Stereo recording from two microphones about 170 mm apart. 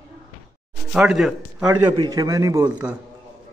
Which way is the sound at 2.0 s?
20° right (ahead or behind).